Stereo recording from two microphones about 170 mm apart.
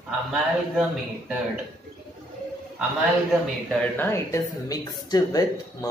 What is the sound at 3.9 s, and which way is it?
A woman's voice, 15° left (ahead or behind).